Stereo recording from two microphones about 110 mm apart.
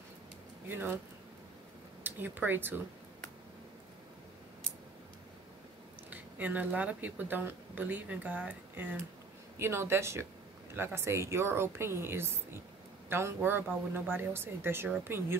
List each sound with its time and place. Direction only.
0.7 s a woman's voice: 20° right (ahead or behind)
2.0 s speech: 15° right (ahead or behind)
6.0 s a woman's voice: 15° right (ahead or behind)